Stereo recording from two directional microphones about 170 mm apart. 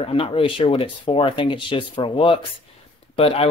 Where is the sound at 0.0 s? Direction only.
35° left (ahead or behind).